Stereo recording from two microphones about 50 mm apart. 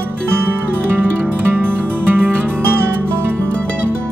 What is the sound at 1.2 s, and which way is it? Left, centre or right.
Music, right.